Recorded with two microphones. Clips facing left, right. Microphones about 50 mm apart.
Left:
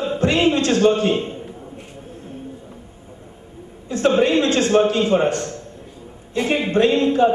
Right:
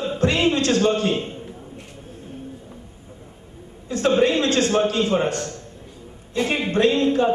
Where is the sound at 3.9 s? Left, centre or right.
Left.